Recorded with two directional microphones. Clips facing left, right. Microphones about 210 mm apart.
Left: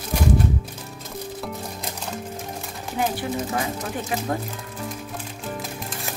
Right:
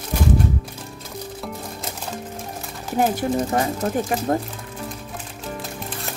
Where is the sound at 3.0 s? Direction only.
45° right (ahead or behind).